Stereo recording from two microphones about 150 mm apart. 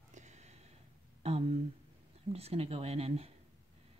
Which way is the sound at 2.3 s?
40° right (ahead or behind).